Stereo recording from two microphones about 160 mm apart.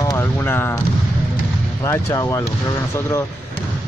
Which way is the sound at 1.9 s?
15° left (ahead or behind).